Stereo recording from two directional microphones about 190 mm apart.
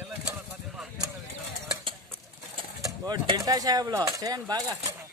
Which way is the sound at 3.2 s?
20° right (ahead or behind).